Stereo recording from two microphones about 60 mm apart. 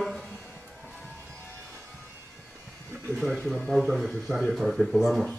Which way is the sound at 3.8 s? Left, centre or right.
Centre.